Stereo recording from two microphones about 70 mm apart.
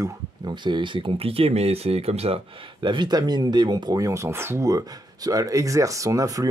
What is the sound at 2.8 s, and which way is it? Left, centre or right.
Speech, right.